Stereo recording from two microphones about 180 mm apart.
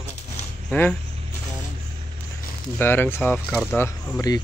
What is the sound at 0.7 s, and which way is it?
Speech, 10° left (ahead or behind).